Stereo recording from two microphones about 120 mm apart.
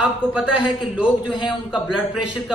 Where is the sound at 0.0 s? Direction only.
5° right (ahead or behind).